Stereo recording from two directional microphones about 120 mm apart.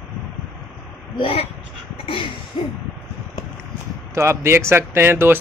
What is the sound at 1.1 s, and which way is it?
Speech, 50° left (ahead or behind).